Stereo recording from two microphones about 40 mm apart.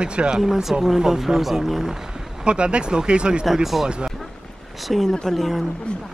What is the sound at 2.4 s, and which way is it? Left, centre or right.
Speech, right.